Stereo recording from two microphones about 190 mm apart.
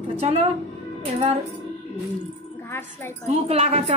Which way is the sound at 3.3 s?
35° right (ahead or behind).